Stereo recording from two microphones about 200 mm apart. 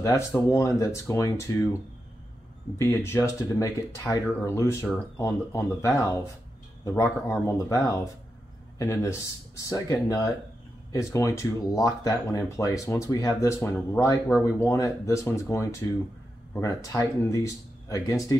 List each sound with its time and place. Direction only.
0.0 s speech: 15° left (ahead or behind)
2.8 s speech: 15° left (ahead or behind)